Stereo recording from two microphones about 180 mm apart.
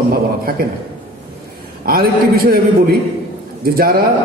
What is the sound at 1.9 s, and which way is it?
A man's voice, 55° right (ahead or behind).